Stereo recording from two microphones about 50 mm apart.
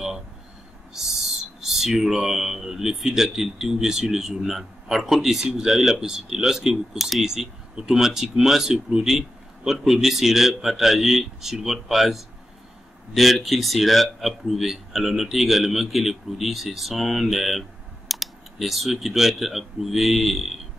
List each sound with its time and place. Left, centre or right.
1.0 s speech: centre